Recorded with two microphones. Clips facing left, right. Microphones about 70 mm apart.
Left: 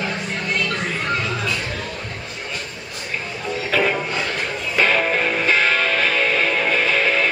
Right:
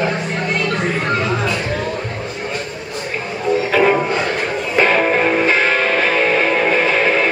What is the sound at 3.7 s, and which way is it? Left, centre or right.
Music, right.